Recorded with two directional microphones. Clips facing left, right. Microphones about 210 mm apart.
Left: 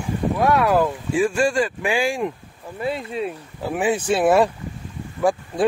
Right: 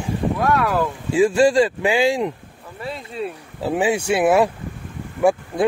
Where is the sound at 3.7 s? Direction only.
20° right (ahead or behind).